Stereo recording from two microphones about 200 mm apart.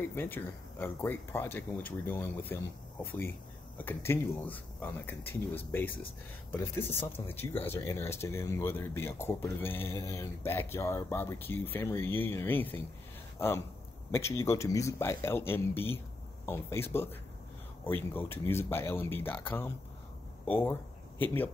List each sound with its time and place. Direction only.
0.0 s speech: 10° left (ahead or behind)
20.4 s speech: 10° left (ahead or behind)